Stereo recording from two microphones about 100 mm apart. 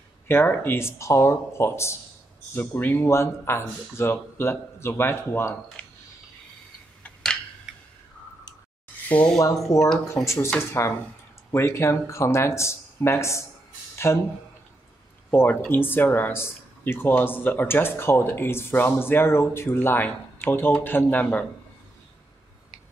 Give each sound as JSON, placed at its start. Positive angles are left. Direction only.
{"t": 0.3, "sound": "speech", "side_deg": 25}
{"t": 9.1, "sound": "speech", "side_deg": 10}
{"t": 10.0, "sound": "speech", "side_deg": 30}
{"t": 15.7, "sound": "speech", "side_deg": 20}